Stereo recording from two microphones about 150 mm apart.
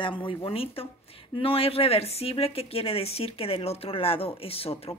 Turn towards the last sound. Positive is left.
turn(degrees=40)  # may be behind; listen again after turning